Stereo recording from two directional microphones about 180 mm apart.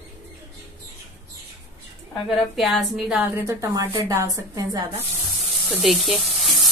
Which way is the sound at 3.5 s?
15° right (ahead or behind).